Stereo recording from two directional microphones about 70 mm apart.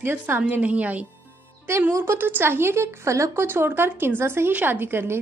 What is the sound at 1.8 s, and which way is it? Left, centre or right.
A woman's voice, right.